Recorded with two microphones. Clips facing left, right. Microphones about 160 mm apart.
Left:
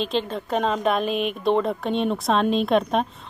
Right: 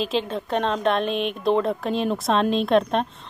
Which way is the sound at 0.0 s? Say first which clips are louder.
Even; centre (ahead or behind).